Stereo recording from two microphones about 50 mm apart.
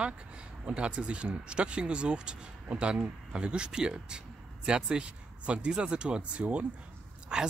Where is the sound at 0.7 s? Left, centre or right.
Right.